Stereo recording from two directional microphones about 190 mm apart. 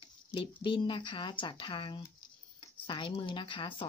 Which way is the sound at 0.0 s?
25° left (ahead or behind).